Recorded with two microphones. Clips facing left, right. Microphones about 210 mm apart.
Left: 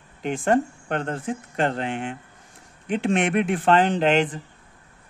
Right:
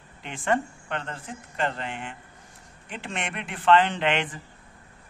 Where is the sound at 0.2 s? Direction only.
40° left (ahead or behind).